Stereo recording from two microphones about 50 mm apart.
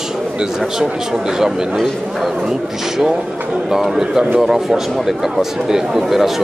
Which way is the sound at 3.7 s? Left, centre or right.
Centre.